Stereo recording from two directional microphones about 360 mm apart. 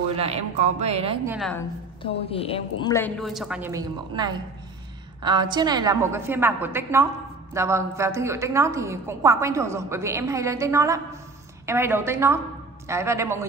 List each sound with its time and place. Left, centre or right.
0.1 s a woman's voice: centre
1.3 s a woman's voice: centre
2.2 s a woman's voice: centre